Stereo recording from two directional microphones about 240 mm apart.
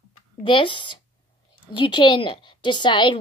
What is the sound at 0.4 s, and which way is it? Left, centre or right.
A woman's voice, left.